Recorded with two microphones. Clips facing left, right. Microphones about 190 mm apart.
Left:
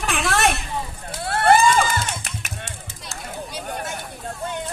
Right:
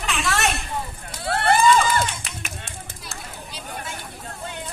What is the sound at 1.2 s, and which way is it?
Vehicle, 55° left (ahead or behind).